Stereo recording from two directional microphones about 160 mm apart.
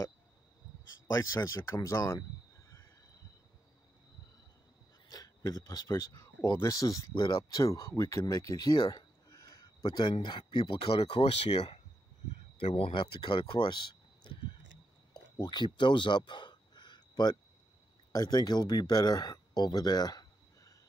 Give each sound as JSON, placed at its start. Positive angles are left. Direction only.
{"t": 1.1, "sound": "speech", "side_deg": 20}
{"t": 5.5, "sound": "speech", "side_deg": 20}
{"t": 15.1, "sound": "gasp", "side_deg": 25}
{"t": 18.1, "sound": "speech", "side_deg": 25}